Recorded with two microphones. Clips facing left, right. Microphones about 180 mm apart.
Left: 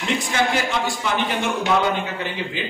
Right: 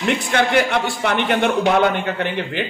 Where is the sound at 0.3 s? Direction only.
60° right (ahead or behind).